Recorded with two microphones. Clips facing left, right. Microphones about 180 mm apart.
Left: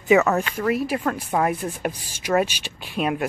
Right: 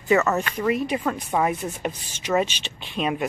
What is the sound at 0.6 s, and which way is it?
Speech, 5° left (ahead or behind).